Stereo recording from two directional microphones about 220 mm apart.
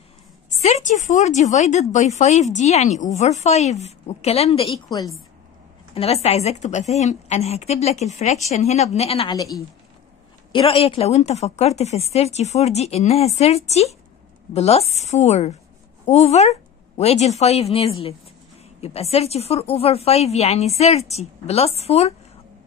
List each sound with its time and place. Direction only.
0.5 s a woman's voice: 30° left (ahead or behind)